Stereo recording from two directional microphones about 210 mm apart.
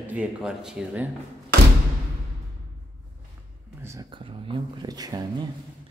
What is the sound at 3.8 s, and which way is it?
Speech, 15° right (ahead or behind).